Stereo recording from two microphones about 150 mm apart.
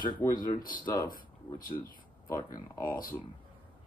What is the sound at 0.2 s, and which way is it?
Speech, 30° left (ahead or behind).